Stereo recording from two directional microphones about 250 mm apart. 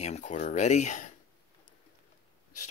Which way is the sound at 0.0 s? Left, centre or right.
Left.